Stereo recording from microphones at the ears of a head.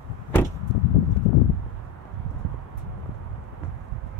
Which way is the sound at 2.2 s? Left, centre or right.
Right.